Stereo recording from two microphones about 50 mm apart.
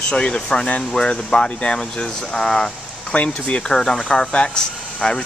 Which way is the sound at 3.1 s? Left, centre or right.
Left.